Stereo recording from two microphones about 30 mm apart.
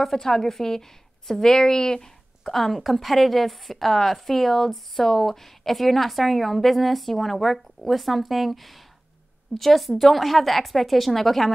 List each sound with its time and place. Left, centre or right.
0.0 s a woman's voice: centre
2.4 s a woman's voice: centre